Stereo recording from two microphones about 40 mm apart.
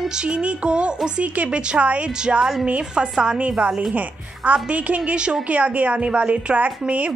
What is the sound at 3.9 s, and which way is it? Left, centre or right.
A woman's voice, right.